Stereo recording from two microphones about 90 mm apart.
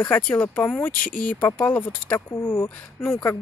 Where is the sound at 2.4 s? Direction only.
25° left (ahead or behind).